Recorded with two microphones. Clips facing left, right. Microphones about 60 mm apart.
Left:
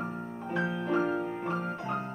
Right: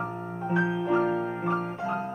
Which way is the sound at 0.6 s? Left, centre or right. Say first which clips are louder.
Right 4 dB; centre.